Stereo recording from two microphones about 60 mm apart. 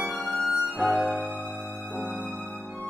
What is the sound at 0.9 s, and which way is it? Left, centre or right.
Music, right.